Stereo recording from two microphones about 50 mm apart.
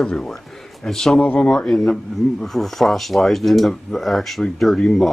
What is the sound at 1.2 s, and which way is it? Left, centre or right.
Speech, left.